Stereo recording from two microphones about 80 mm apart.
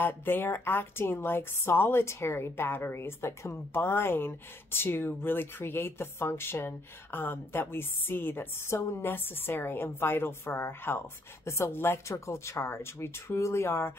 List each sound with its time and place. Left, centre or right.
0.0 s a woman's voice: left